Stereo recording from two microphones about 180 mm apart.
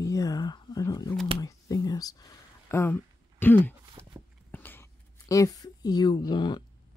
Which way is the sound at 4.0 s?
15° right (ahead or behind).